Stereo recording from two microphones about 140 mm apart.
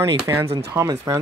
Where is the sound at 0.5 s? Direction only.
20° right (ahead or behind).